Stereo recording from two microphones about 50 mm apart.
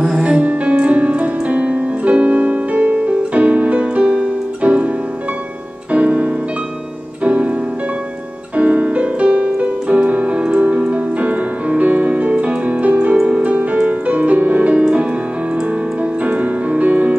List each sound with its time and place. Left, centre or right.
0.4 s music: right
5.9 s music: right
8.5 s music: right